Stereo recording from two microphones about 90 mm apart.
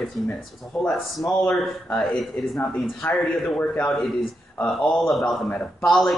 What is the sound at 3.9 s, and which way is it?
Speech, centre (ahead or behind).